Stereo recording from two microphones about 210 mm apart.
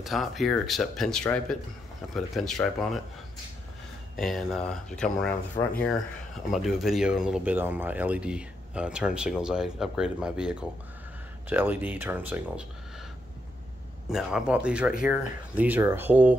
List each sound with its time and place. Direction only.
0.0 s speech: centre (ahead or behind)
4.2 s speech: centre (ahead or behind)
14.0 s speech: 5° right (ahead or behind)